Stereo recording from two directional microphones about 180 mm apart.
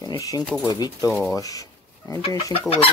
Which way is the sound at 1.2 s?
20° left (ahead or behind).